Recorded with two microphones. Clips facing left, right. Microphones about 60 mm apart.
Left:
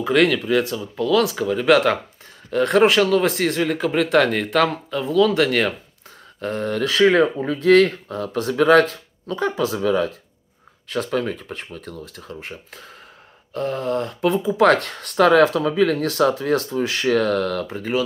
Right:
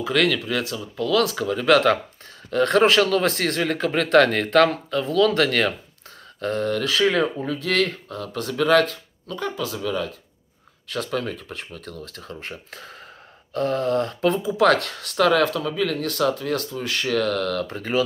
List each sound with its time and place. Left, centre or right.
0.0 s speech: left
10.9 s speech: left; by 14.4 s centre
14.6 s speech: left